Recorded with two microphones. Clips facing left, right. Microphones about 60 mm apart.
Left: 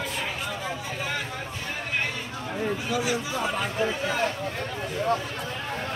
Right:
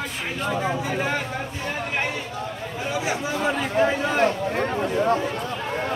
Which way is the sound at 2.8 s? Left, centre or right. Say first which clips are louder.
Right 2 dB; right.